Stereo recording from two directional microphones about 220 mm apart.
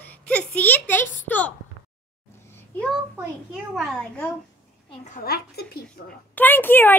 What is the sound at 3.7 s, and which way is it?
Speech, centre (ahead or behind).